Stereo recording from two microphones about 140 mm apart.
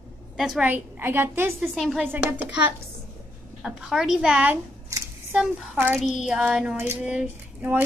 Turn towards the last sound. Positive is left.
turn(degrees=-15)  # may be behind; listen again after turning